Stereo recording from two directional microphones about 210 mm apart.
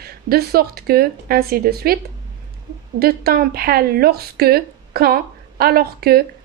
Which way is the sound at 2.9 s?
45° right (ahead or behind).